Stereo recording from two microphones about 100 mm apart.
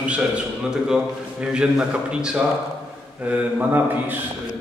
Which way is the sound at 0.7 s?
5° right (ahead or behind).